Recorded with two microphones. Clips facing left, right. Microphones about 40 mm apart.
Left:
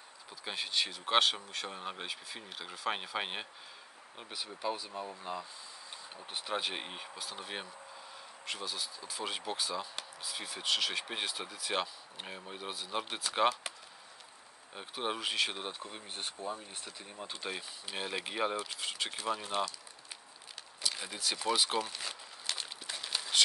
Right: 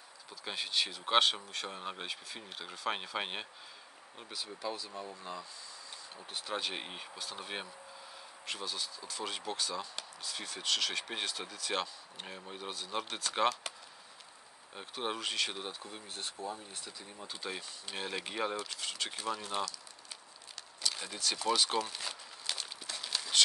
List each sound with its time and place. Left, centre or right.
0.5 s speech: centre
4.2 s speech: centre
9.0 s speech: centre
14.8 s speech: centre
15.8 s speech: left; by 19.7 s centre
20.8 s speech: centre
22.9 s a sound: centre